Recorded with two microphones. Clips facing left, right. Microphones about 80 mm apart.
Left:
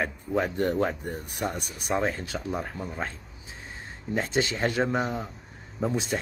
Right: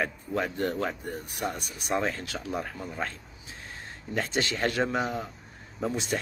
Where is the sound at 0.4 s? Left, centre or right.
Left.